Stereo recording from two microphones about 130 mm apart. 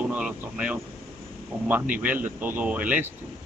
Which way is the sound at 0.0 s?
10° right (ahead or behind).